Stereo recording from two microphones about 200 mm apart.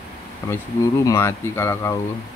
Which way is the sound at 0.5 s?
15° left (ahead or behind).